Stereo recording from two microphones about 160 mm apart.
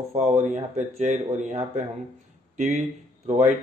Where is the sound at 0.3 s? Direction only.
50° right (ahead or behind).